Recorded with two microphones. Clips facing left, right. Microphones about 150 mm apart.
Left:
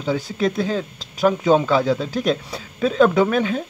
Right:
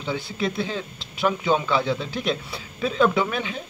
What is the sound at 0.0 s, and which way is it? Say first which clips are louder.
Speech: left 6 dB; 40° left (ahead or behind).